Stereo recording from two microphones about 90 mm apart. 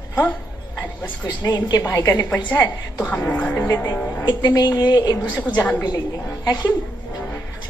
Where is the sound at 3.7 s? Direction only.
35° left (ahead or behind).